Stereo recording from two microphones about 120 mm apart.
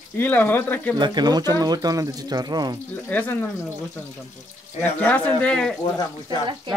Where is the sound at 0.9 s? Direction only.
35° right (ahead or behind).